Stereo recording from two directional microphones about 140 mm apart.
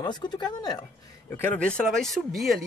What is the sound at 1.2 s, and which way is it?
Speech, 10° left (ahead or behind).